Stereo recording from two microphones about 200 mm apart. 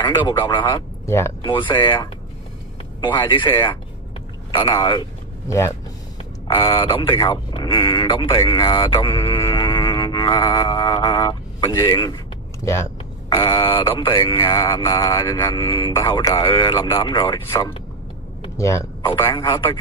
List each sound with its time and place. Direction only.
0.0 s speech: 25° left (ahead or behind)
1.5 s speech: 25° left (ahead or behind)
3.3 s speech: 20° left (ahead or behind)